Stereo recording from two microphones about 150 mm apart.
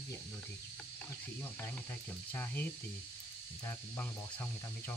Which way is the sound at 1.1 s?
15° left (ahead or behind).